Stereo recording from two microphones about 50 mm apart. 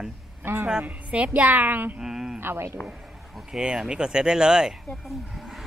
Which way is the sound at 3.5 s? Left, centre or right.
Centre.